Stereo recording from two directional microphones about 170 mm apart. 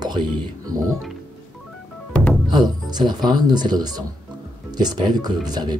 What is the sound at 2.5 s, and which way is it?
Speech, 25° right (ahead or behind).